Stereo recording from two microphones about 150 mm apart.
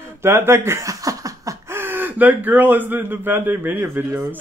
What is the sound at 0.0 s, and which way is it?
Speech, 15° right (ahead or behind).